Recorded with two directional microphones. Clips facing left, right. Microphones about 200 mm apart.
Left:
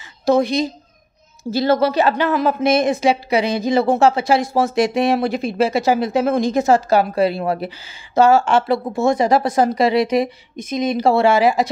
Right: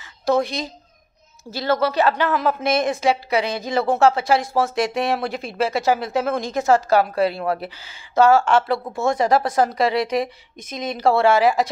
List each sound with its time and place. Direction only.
1.5 s a woman's voice: 25° left (ahead or behind)